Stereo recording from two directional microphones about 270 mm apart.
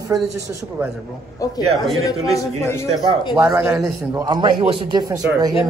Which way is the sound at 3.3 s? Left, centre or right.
Centre.